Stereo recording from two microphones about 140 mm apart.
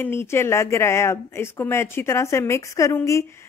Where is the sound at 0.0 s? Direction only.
15° left (ahead or behind).